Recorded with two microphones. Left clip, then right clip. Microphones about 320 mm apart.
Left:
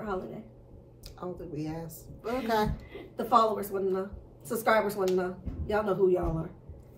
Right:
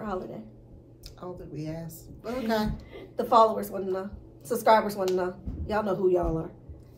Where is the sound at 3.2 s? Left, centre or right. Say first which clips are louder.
Right 4 dB; centre.